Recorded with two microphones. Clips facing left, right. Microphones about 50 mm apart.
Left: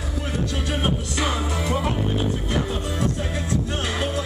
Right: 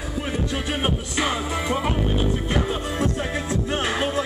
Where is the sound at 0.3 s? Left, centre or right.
Centre.